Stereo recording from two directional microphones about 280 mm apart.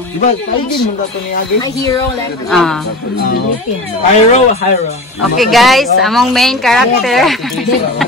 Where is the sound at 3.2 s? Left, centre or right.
Left.